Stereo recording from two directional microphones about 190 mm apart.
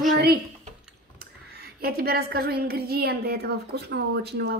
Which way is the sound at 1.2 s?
55° right (ahead or behind).